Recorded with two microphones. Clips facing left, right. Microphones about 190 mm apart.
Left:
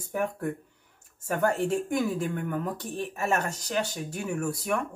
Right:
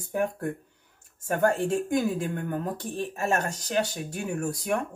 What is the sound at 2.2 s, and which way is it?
Speech, 35° right (ahead or behind).